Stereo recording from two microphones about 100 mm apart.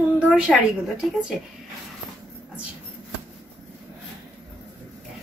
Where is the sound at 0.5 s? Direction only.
10° left (ahead or behind).